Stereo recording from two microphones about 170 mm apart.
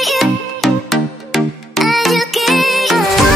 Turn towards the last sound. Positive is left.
turn(degrees=0)  # may be behind; listen again after turning